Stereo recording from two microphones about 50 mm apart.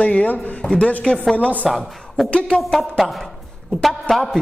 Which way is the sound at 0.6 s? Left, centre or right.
Centre.